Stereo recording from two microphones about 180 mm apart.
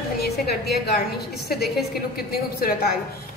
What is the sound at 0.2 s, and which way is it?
A woman's voice, 60° left (ahead or behind).